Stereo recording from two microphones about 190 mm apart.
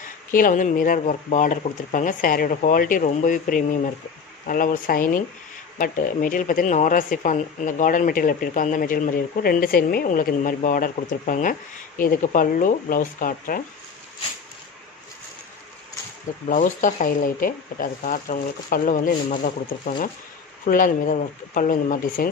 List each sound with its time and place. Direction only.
0.3 s speech: 45° left (ahead or behind)
16.4 s speech: 45° left (ahead or behind)